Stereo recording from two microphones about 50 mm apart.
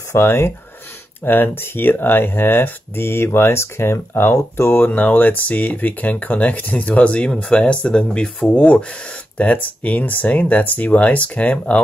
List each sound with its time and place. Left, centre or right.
0.1 s speech: left
1.2 s speech: left
4.8 s speech: left